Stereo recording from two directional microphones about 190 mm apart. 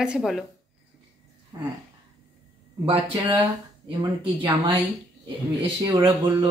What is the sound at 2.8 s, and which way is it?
Speech, 25° right (ahead or behind).